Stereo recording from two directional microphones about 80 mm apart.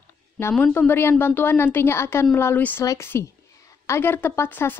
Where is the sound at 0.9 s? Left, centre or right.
Left.